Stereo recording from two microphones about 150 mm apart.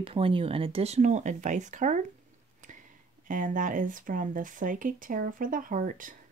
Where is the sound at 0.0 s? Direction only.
40° right (ahead or behind); by 2.0 s 55° right (ahead or behind).